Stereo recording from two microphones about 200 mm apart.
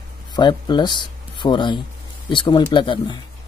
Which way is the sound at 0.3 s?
20° left (ahead or behind).